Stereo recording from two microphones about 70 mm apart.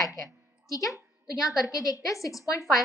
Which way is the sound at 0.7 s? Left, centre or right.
Left.